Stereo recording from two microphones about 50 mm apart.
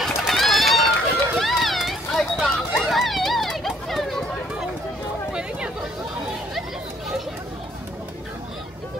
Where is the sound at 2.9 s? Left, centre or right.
Centre.